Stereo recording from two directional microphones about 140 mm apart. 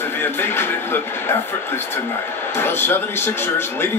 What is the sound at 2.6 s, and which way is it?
A man's voice, 15° left (ahead or behind).